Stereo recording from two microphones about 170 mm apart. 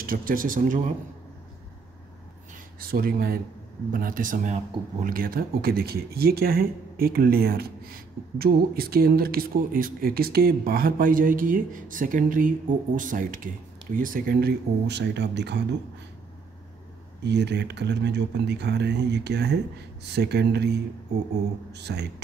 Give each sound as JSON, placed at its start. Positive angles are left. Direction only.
{"t": 0.0, "sound": "speech", "side_deg": -55}
{"t": 2.8, "sound": "speech", "side_deg": -60}
{"t": 17.2, "sound": "speech", "side_deg": -90}